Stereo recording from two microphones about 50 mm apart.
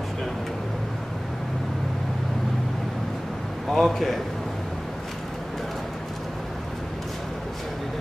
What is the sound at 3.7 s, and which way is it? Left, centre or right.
Speech, centre.